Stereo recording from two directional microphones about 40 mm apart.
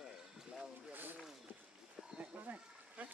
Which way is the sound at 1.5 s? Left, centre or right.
Right.